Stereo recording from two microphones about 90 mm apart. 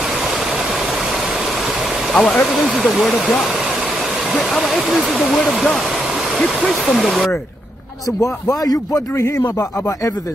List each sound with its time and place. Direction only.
2.1 s speech: 15° left (ahead or behind)
2.4 s speech: centre (ahead or behind)
8.2 s speech: 40° left (ahead or behind)